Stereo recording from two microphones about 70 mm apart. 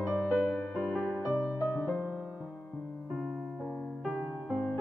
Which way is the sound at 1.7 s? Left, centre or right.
Left.